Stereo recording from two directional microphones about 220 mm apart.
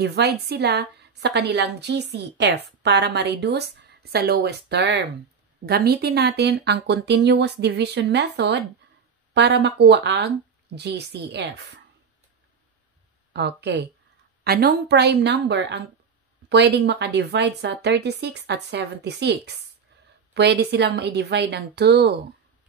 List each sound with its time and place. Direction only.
0.0 s a woman's voice: 50° right (ahead or behind)
13.3 s a woman's voice: 50° right (ahead or behind)